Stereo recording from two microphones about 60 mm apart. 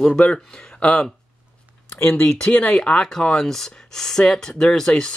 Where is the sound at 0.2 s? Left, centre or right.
Left.